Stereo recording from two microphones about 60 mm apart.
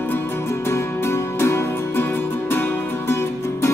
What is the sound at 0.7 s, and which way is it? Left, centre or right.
Music, left.